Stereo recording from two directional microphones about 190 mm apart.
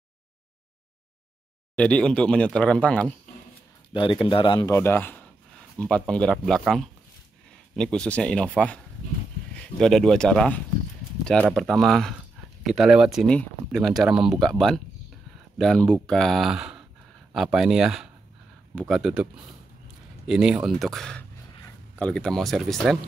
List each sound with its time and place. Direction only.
1.8 s speech: 5° left (ahead or behind)
3.9 s a man's voice: 25° left (ahead or behind)
4.7 s speech: 10° left (ahead or behind)